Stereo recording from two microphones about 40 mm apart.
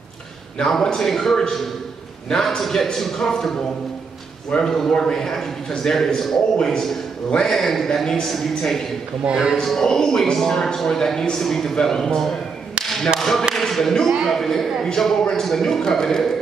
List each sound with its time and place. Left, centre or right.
0.6 s a man's voice: centre
4.6 s a man's voice: centre
7.5 s a man's voice: centre
9.3 s a man's voice: centre
9.6 s a man's voice: centre